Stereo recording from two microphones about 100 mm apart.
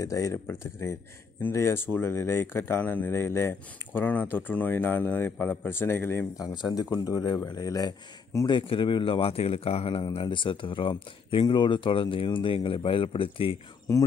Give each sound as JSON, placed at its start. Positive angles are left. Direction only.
{"t": 0.0, "sound": "speech", "side_deg": 35}
{"t": 6.3, "sound": "speech", "side_deg": 45}
{"t": 8.5, "sound": "speech", "side_deg": 55}
{"t": 10.1, "sound": "speech", "side_deg": 55}
{"t": 11.4, "sound": "speech", "side_deg": 50}
{"t": 13.9, "sound": "speech", "side_deg": 35}